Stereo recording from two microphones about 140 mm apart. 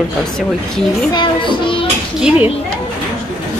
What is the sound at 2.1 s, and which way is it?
Speech, 10° right (ahead or behind).